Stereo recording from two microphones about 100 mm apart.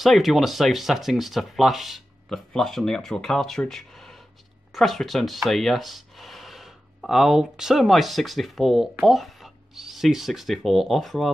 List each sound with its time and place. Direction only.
0.0 s speech: centre (ahead or behind)